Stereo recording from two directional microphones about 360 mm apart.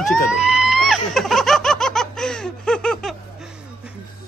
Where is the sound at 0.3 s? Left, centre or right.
Centre.